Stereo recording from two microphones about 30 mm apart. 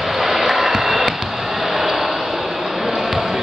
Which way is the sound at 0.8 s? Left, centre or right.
Centre.